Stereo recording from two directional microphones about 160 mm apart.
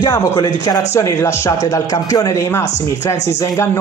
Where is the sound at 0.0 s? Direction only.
20° left (ahead or behind).